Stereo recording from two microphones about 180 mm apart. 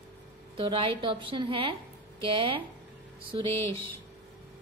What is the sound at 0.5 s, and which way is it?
A woman's voice, 30° right (ahead or behind).